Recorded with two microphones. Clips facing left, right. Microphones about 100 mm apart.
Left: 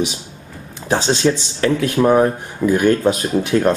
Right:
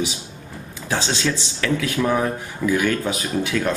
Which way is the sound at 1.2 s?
30° left (ahead or behind).